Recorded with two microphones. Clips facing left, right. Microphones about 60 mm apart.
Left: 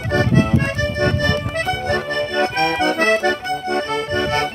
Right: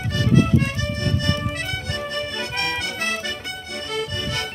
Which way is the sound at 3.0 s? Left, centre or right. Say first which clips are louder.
Left 10 dB; left.